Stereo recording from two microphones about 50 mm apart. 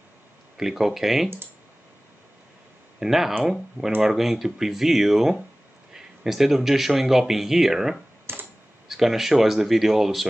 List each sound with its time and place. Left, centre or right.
0.6 s speech: centre
3.0 s speech: centre
8.3 s typing: right
8.8 s speech: centre